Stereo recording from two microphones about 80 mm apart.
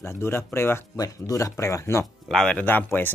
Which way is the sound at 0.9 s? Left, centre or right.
Left.